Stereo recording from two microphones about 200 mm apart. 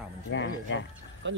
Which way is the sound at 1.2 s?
65° right (ahead or behind).